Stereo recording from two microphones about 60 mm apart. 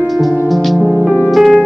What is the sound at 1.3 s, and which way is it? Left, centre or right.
Music, centre.